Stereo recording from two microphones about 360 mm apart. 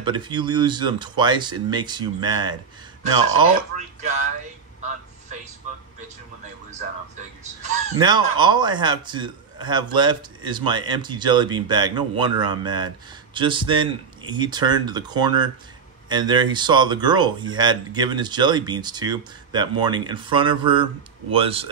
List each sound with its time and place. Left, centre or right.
0.0 s a man's voice: centre
8.0 s a man's voice: centre